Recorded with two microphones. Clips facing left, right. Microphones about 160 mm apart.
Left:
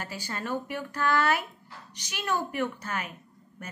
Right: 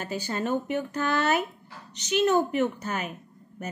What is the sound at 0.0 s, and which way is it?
A woman's voice, 20° right (ahead or behind).